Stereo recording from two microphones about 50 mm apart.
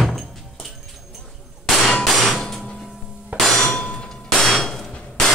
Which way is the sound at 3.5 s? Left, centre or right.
Centre.